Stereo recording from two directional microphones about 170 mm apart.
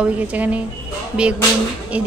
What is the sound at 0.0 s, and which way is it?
Speech, 10° right (ahead or behind).